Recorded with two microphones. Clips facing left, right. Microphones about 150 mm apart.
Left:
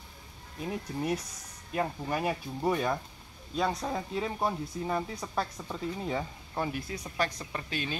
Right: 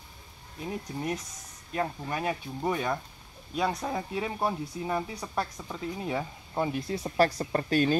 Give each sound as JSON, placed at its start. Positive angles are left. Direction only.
{"t": 0.6, "sound": "speech", "side_deg": 0}
{"t": 6.9, "sound": "speech", "side_deg": -35}